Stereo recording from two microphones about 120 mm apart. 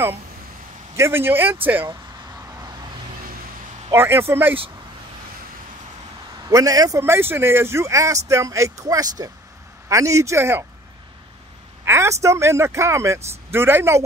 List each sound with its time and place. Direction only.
0.9 s speech: 20° right (ahead or behind)
3.9 s speech: 20° right (ahead or behind)
6.5 s speech: 30° right (ahead or behind)
11.8 s speech: 20° right (ahead or behind)